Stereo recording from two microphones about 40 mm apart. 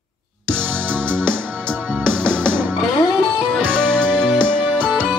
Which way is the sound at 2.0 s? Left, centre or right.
Left.